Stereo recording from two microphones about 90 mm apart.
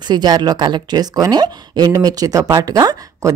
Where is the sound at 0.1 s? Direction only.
50° right (ahead or behind).